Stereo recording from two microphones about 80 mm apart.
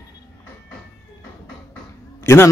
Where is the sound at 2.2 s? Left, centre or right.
Left.